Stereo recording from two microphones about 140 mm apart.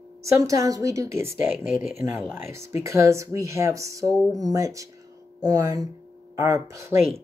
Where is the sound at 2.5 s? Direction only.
20° right (ahead or behind).